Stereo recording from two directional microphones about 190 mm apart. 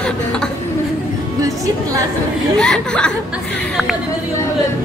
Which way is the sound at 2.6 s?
5° left (ahead or behind).